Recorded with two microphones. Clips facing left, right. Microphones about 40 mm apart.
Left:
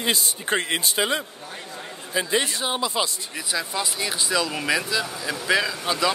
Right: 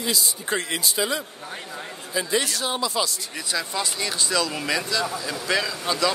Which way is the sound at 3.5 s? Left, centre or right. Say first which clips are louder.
Even; centre.